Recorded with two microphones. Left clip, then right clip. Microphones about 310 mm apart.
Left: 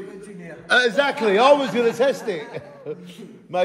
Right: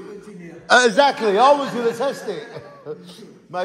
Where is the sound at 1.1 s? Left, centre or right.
Centre.